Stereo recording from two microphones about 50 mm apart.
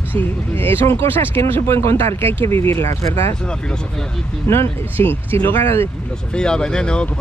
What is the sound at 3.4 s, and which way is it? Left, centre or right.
Speech, centre.